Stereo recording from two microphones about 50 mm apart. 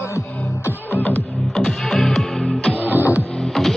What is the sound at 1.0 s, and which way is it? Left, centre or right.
Music, centre.